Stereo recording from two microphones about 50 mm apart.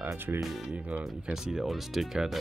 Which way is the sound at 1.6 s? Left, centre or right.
Centre.